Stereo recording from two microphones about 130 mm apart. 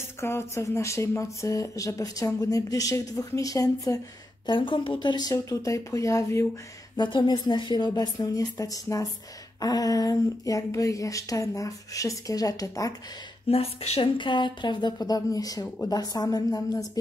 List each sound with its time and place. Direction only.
0.2 s speech: 20° left (ahead or behind)
4.5 s speech: 40° left (ahead or behind); by 6.4 s 25° left (ahead or behind)
7.0 s speech: 35° left (ahead or behind)
13.5 s speech: 50° left (ahead or behind); by 16.8 s 25° left (ahead or behind)